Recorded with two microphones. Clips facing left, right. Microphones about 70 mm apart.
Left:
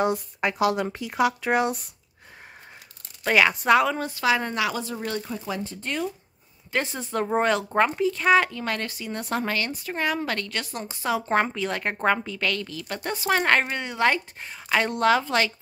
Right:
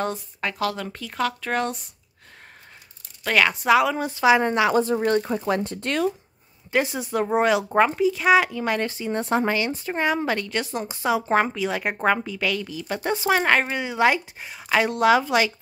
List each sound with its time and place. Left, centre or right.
0.0 s speech: centre
3.3 s a woman's voice: centre
4.0 s a woman's voice: centre; by 6.1 s right
6.7 s a woman's voice: centre
8.9 s a woman's voice: right
11.2 s a woman's voice: centre
13.3 s a woman's voice: centre